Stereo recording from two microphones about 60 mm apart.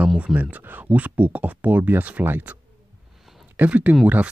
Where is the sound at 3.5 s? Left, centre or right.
Right.